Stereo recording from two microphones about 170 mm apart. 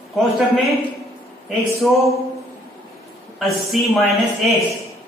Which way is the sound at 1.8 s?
Centre (ahead or behind).